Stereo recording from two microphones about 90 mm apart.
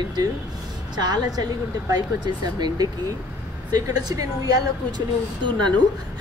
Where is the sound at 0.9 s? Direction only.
45° right (ahead or behind).